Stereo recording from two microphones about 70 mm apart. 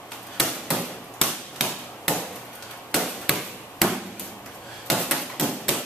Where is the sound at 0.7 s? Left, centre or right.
Centre.